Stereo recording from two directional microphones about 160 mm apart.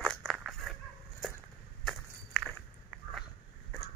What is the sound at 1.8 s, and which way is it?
Crushing, centre (ahead or behind).